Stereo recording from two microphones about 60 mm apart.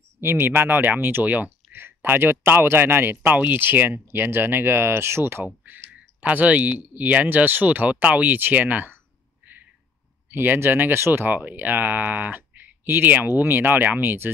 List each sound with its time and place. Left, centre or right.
0.2 s a man's voice: right
1.7 s a man's voice: right
5.7 s a sound: right
6.2 s speech: right
10.3 s a man's voice: right
11.3 s a man's voice: right